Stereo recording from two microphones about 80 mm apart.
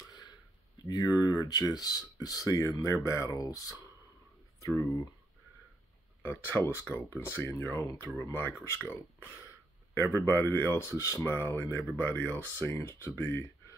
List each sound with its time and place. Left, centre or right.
0.8 s speech: left
3.3 s speech: left
4.6 s speech: left
6.2 s speech: left